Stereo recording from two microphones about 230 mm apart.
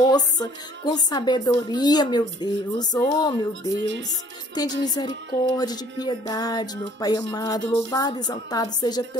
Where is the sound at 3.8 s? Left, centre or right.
Right.